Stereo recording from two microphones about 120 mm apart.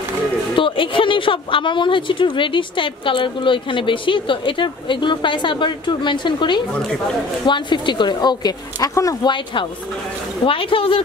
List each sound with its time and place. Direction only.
0.6 s speech: 45° left (ahead or behind); by 9.3 s 30° left (ahead or behind)
10.4 s speech: 50° left (ahead or behind)